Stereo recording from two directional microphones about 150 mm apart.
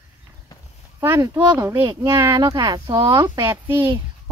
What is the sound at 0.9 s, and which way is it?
Speech, 20° right (ahead or behind).